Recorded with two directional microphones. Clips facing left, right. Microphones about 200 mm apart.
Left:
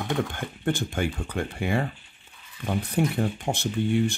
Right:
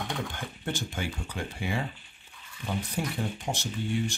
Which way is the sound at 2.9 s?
60° left (ahead or behind).